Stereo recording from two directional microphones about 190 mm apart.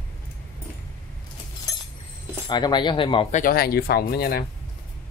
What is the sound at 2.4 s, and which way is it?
Speech, 25° left (ahead or behind).